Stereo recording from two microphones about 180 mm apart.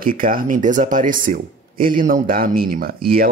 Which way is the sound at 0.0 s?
50° right (ahead or behind).